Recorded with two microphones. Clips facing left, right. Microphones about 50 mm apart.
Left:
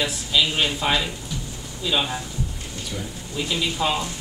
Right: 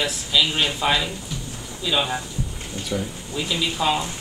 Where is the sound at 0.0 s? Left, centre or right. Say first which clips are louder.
Right 1 dB; centre.